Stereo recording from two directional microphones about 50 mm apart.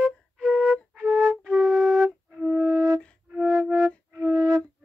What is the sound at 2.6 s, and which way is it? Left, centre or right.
Flute, right.